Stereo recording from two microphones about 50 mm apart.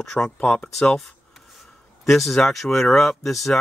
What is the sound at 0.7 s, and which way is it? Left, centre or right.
Speech, centre.